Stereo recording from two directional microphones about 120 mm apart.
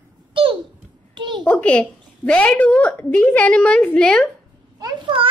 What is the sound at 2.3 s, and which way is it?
A woman's voice, 10° left (ahead or behind).